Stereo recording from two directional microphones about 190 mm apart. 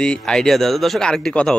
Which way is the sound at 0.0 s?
5° left (ahead or behind).